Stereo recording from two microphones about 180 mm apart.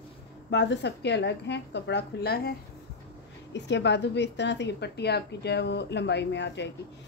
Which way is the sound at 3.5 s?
75° left (ahead or behind).